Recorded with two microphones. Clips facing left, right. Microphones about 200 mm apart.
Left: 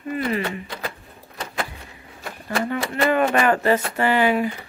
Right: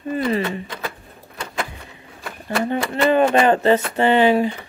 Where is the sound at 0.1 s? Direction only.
30° right (ahead or behind).